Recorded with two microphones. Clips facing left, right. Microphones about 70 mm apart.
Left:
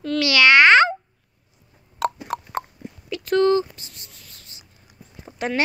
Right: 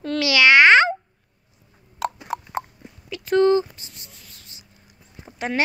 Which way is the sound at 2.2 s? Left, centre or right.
Centre.